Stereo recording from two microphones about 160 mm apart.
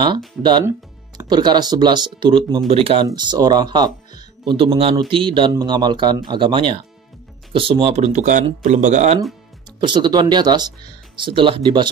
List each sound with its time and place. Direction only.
0.4 s speech: 30° right (ahead or behind)
3.1 s speech: 25° right (ahead or behind); by 9.2 s 45° right (ahead or behind)
9.8 s speech: 30° right (ahead or behind)